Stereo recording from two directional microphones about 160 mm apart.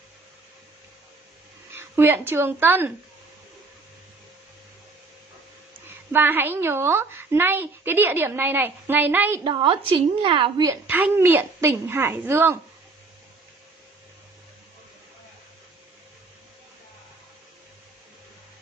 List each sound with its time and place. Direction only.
1.8 s a woman's voice: 15° right (ahead or behind)
5.9 s a woman's voice: 10° right (ahead or behind)
9.4 s a woman's voice: 30° right (ahead or behind)
10.9 s a woman's voice: 10° right (ahead or behind)